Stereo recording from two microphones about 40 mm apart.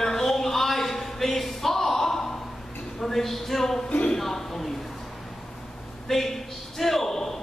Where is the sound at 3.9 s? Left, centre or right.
Left.